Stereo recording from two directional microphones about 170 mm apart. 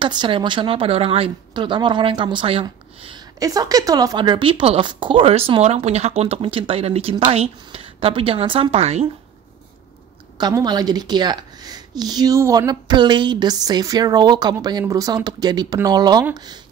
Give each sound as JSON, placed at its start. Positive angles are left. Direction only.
{"t": 0.0, "sound": "speech", "side_deg": -30}
{"t": 10.3, "sound": "speech", "side_deg": -25}